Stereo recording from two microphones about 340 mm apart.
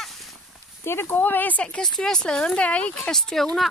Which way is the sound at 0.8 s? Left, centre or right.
Centre.